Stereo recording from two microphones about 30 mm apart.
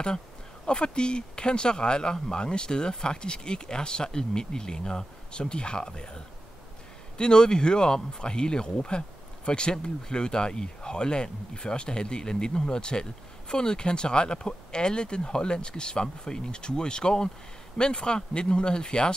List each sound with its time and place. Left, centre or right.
0.7 s speech: left